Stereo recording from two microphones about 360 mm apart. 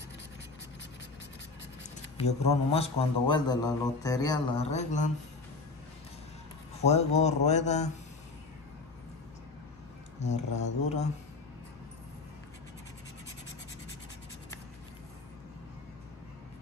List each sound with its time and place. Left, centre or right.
2.1 s a man's voice: centre
6.8 s a man's voice: centre
10.2 s a man's voice: centre